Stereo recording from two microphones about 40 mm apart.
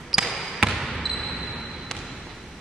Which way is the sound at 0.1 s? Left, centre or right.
Centre.